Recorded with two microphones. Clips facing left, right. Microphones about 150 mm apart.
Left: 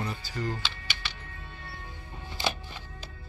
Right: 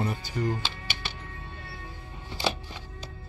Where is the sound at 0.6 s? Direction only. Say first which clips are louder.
Right 2 dB; 45° right (ahead or behind).